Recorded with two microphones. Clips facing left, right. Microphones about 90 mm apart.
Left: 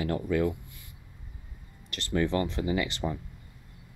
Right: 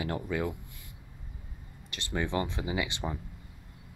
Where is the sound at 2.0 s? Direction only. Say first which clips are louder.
Left 4 dB; 15° right (ahead or behind).